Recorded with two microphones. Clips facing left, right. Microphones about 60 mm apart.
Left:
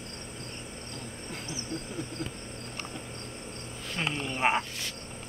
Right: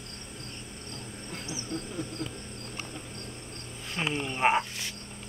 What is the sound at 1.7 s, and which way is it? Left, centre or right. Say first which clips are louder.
Speech: right 2 dB; left.